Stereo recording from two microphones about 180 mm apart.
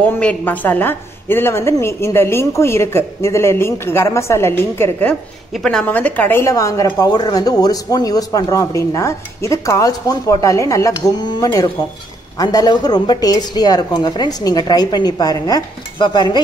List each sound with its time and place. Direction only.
0.0 s a woman's voice: 10° left (ahead or behind)
5.5 s a woman's voice: 5° left (ahead or behind); by 16.3 s 25° left (ahead or behind)